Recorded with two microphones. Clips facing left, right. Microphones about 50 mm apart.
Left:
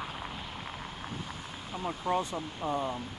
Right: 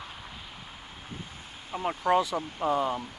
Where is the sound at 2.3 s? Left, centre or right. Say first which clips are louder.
Right 5 dB; right.